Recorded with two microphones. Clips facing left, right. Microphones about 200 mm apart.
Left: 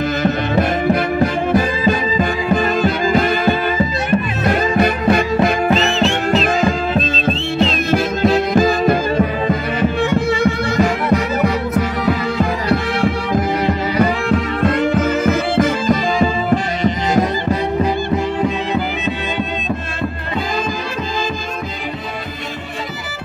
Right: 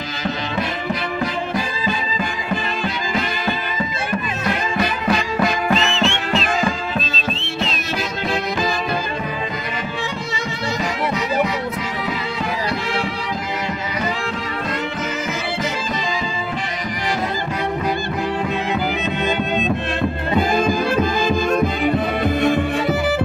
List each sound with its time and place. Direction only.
1.2 s music: 50° left (ahead or behind)
4.5 s music: 55° left (ahead or behind)
5.4 s music: 35° left (ahead or behind)
8.5 s music: 50° left (ahead or behind)
10.0 s music: 55° left (ahead or behind)
14.6 s music: 55° left (ahead or behind)